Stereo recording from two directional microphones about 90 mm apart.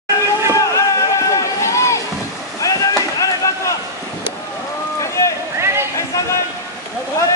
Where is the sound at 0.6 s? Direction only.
35° left (ahead or behind).